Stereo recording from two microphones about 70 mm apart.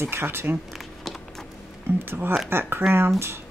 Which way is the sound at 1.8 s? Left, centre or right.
Right.